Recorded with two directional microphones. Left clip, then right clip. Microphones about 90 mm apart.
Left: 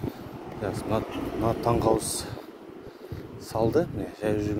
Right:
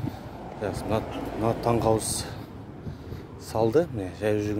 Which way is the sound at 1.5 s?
90° right.